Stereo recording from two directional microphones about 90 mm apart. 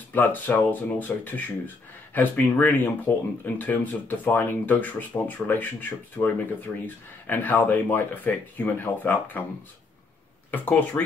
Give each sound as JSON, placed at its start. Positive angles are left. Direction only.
{"t": 0.1, "sound": "speech", "side_deg": 20}
{"t": 10.5, "sound": "speech", "side_deg": 20}